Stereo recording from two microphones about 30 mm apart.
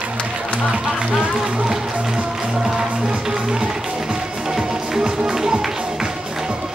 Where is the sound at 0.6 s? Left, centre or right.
Right.